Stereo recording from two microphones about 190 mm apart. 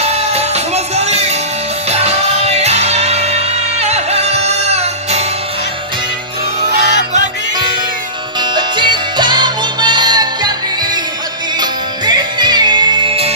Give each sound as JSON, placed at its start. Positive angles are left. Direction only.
{"t": 0.0, "sound": "music", "side_deg": -35}
{"t": 8.4, "sound": "music", "side_deg": -25}
{"t": 11.6, "sound": "music", "side_deg": -20}